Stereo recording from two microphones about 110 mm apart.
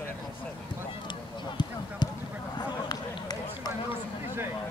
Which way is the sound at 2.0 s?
40° left (ahead or behind).